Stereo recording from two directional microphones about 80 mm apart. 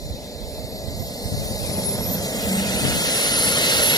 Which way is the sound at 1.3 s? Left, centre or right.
Left.